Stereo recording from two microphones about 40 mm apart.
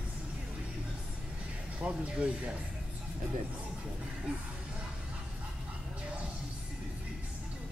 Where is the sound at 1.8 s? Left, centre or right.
Right.